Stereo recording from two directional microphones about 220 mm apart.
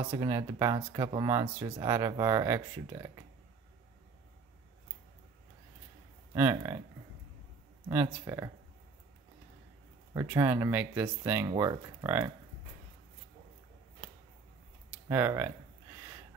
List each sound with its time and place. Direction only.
0.1 s speech: 15° right (ahead or behind)
6.3 s speech: 15° right (ahead or behind)
7.9 s speech: 10° right (ahead or behind)
10.1 s speech: 10° right (ahead or behind)
14.9 s speech: 10° right (ahead or behind)